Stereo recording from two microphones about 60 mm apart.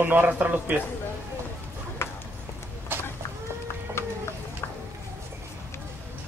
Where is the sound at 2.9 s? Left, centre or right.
Right.